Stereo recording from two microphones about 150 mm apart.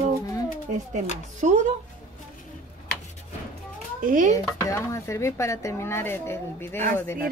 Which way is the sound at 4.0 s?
60° right (ahead or behind).